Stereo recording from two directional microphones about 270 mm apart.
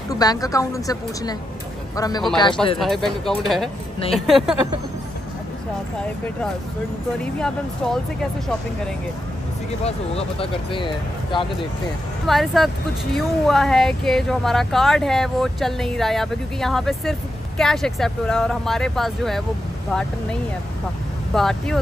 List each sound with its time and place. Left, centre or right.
0.1 s a woman's voice: centre
2.8 s speech: centre
7.3 s speech: centre
9.8 s speech: left
12.3 s speech: centre